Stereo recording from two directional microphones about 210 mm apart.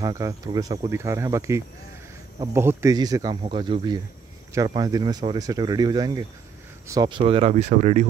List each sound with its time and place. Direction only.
0.0 s speech: 15° right (ahead or behind); by 8.1 s 35° right (ahead or behind)